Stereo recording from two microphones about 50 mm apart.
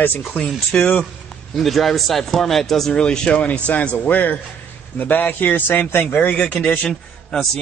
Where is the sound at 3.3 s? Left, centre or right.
Left.